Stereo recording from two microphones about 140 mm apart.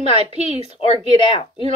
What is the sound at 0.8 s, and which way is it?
Speech, 40° left (ahead or behind).